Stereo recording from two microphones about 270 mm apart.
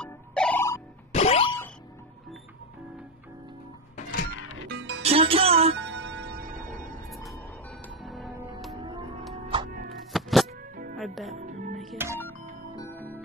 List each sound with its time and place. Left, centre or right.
0.0 s music: centre
1.1 s music: left
3.9 s music: left
4.6 s music: right
5.0 s music: right
5.8 s music: right
8.0 s music: centre
10.1 s music: centre
11.0 s speech: centre
11.3 s music: right
11.8 s music: centre